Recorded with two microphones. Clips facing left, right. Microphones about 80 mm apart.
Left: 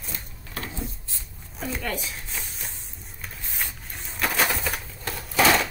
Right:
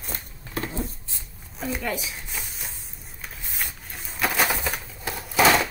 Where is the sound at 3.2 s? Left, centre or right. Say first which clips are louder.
Even; centre.